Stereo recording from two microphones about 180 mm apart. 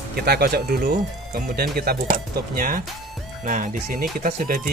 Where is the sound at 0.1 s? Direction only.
60° right (ahead or behind).